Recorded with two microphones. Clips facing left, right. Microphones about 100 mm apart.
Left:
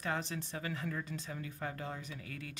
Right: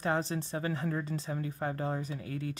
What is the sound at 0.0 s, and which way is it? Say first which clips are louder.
Speech: right 6 dB; 30° right (ahead or behind).